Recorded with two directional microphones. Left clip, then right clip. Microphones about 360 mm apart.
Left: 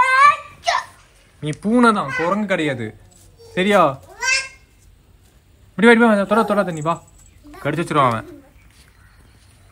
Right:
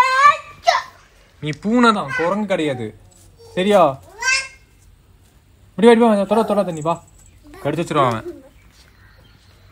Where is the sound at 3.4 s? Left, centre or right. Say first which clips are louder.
Right 1 dB; centre.